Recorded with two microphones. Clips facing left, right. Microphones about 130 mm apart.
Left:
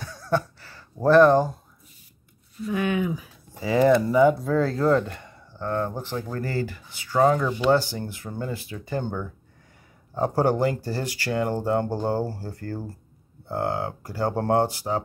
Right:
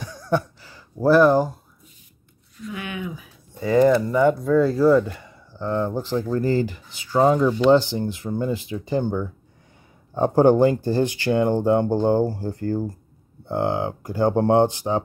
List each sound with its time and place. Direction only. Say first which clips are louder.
0.0 s a sound: right 2 dB; 15° right (ahead or behind)
2.7 s speech: left 7 dB; 45° left (ahead or behind)
3.5 s speech: right 2 dB; centre (ahead or behind)
5.6 s speech: right 3 dB; 15° right (ahead or behind)